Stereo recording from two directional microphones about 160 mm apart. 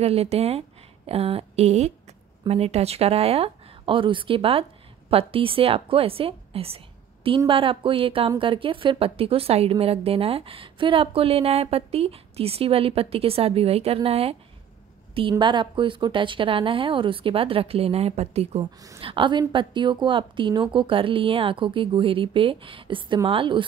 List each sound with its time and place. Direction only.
0.0 s a woman's voice: 40° right (ahead or behind)
18.6 s a woman's voice: 20° right (ahead or behind)
18.9 s a woman's voice: 35° right (ahead or behind)